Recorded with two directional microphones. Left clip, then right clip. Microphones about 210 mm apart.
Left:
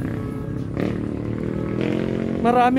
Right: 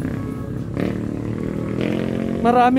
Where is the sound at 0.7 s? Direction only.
40° right (ahead or behind).